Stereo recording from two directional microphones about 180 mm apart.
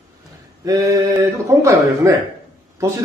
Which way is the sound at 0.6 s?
20° right (ahead or behind).